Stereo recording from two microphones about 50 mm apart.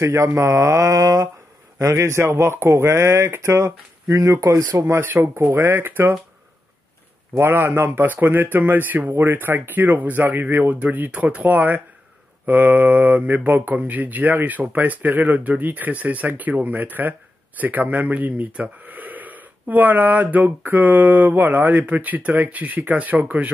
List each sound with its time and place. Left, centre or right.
0.0 s speech: right
4.7 s speech: right
5.0 s speech: right
5.3 s speech: right
7.3 s speech: right
9.1 s speech: right